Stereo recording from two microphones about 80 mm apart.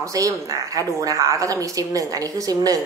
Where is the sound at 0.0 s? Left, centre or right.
Right.